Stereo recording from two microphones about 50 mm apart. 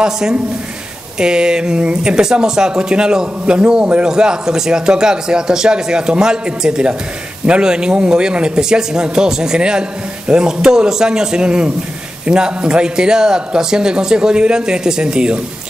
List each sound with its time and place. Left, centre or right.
0.0 s speech: centre
4.1 s speech: centre